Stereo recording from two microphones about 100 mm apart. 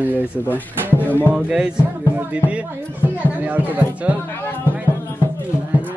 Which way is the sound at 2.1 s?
10° right (ahead or behind).